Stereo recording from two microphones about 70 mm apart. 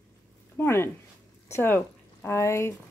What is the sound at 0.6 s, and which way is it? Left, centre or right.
Speech, left.